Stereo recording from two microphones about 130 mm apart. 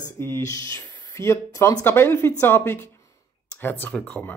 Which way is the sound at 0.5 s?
25° left (ahead or behind).